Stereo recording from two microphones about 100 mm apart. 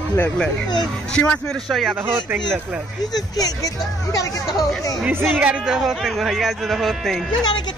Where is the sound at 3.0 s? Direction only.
40° left (ahead or behind).